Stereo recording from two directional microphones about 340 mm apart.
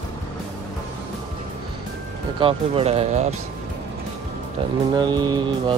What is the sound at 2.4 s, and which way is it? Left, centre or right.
Speech, centre.